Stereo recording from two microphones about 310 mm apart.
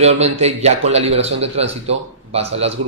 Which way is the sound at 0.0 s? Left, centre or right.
Right.